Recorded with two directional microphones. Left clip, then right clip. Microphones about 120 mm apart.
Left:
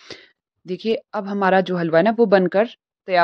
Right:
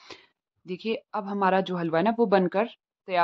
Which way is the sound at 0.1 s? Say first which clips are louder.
Left 10 dB; 35° left (ahead or behind).